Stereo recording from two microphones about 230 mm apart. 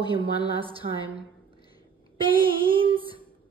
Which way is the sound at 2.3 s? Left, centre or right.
Right.